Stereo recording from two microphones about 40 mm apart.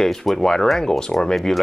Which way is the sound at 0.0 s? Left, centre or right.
Centre.